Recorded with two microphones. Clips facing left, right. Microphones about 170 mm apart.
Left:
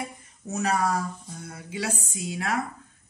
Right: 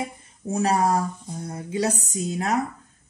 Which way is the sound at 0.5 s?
30° right (ahead or behind).